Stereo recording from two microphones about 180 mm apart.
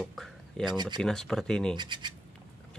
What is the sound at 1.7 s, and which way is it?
Speech, 25° right (ahead or behind).